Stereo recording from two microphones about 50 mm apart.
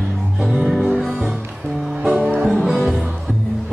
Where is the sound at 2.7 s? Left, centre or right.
Centre.